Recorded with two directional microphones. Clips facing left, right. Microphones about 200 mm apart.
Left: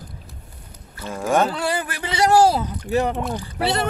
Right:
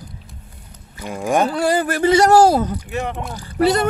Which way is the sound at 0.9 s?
15° right (ahead or behind).